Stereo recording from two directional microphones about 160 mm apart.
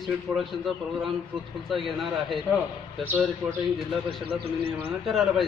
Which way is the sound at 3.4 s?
Centre (ahead or behind).